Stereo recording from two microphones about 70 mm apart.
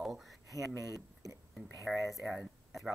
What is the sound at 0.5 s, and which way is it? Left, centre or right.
Speech, right.